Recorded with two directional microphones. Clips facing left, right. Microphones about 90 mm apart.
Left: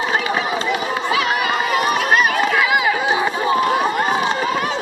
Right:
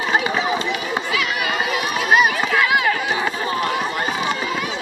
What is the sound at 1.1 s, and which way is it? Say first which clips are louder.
Run: left 6 dB; 40° left (ahead or behind).